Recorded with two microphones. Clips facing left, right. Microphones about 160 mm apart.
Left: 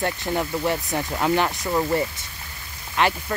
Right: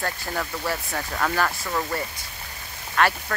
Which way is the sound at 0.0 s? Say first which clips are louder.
Left 5 dB; 20° left (ahead or behind).